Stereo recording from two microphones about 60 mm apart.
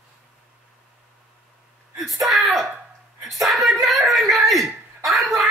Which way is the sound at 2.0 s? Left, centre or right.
Centre.